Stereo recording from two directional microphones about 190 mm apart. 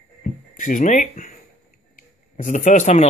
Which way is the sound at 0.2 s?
45° left (ahead or behind).